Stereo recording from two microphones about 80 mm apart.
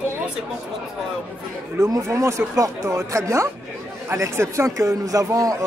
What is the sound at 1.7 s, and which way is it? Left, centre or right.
A man's voice, right.